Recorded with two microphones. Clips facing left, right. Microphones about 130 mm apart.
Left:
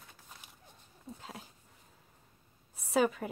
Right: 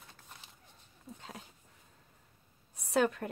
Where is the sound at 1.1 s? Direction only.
Centre (ahead or behind).